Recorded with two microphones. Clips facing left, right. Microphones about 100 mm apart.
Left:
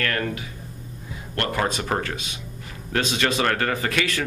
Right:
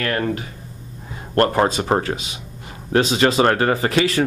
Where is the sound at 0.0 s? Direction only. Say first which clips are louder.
Right 4 dB; 25° right (ahead or behind).